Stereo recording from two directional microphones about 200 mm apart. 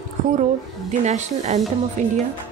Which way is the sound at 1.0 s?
35° right (ahead or behind).